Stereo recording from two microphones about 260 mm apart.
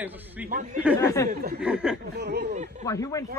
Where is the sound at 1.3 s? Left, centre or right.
Right.